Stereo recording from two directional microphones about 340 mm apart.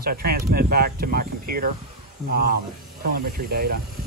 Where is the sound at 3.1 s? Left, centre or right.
Right.